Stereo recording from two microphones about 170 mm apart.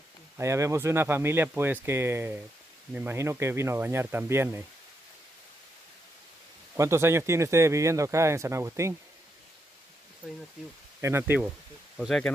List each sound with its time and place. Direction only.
0.4 s speech: 15° right (ahead or behind)
6.8 s speech: 15° right (ahead or behind)
10.2 s speech: 10° left (ahead or behind)
11.0 s speech: 15° right (ahead or behind)
12.0 s speech: centre (ahead or behind)